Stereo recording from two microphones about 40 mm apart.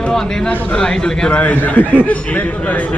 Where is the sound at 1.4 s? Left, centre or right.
Left.